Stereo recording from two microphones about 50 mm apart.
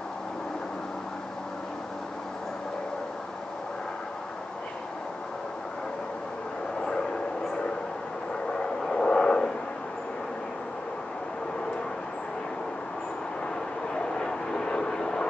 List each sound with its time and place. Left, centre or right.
8.5 s vehicle: centre
13.9 s vehicle: centre